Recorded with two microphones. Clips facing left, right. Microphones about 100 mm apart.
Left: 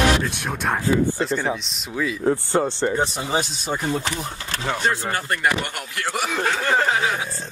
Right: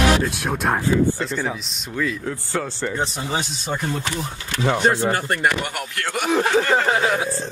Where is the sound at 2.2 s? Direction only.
25° left (ahead or behind).